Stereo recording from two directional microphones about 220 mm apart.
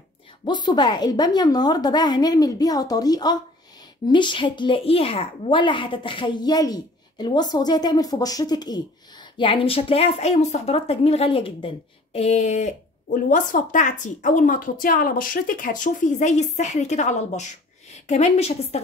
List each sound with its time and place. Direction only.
0.5 s a woman's voice: 20° left (ahead or behind)